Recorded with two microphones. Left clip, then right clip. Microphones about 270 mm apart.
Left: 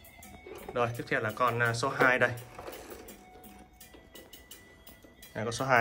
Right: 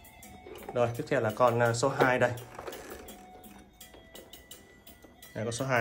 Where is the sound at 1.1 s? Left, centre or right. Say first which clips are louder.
Right 4 dB; centre.